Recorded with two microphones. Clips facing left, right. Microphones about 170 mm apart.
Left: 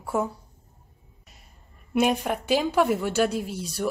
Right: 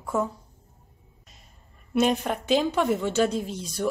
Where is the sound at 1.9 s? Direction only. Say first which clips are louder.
Even; 10° left (ahead or behind).